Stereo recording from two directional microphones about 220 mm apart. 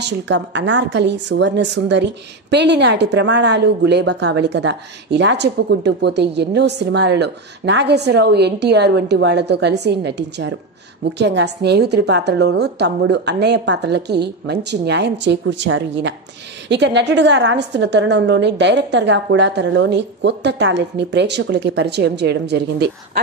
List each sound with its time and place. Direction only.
0.0 s a woman's voice: 55° right (ahead or behind)